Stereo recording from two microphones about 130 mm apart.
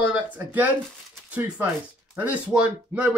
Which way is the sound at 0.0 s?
10° right (ahead or behind).